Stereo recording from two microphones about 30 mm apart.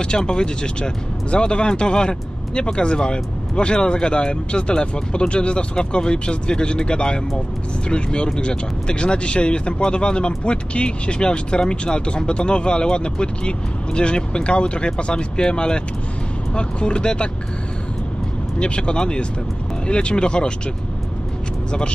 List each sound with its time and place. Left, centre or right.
0.0 s speech: left
18.6 s speech: left